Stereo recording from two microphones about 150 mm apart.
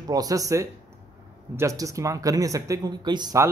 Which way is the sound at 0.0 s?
25° right (ahead or behind).